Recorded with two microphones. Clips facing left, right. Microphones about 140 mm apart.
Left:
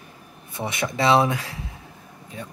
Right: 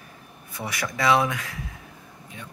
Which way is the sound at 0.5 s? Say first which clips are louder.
Left 4 dB; 25° left (ahead or behind).